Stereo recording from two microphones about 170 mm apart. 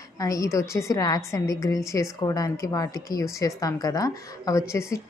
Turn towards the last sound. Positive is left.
turn(degrees=15)  # may be behind; listen again after turning